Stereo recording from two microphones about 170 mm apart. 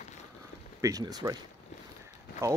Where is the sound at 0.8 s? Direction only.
20° right (ahead or behind).